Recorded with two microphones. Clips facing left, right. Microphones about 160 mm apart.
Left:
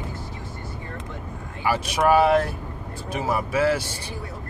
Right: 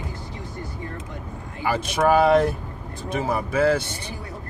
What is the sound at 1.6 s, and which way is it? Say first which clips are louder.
Speech: even; 5° left (ahead or behind).